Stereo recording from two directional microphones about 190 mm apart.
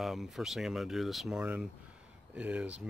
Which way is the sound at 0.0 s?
Centre (ahead or behind).